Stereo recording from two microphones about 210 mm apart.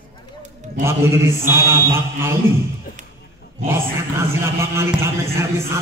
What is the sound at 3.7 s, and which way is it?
A man's voice, 10° right (ahead or behind).